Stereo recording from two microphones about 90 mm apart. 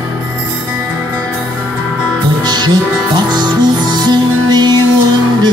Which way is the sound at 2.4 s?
50° right (ahead or behind).